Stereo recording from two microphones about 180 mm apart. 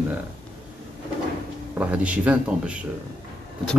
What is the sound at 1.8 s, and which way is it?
Speech, 5° right (ahead or behind).